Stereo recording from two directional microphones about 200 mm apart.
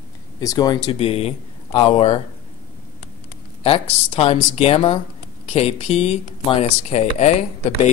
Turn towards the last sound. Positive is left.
turn(degrees=35)  # may be behind; listen again after turning